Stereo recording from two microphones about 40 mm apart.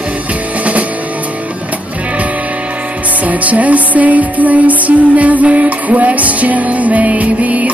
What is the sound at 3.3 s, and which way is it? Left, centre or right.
Music, right.